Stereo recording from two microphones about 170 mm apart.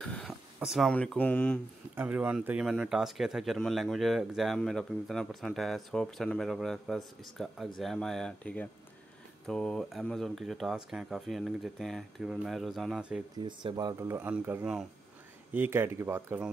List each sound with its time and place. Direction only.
0.0 s speech: 5° left (ahead or behind)
2.0 s speech: 10° right (ahead or behind)
13.4 s speech: 30° right (ahead or behind); by 16.4 s 10° right (ahead or behind)